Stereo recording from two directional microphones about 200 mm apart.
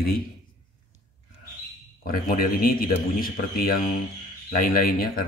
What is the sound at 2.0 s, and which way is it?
Speech, 45° left (ahead or behind).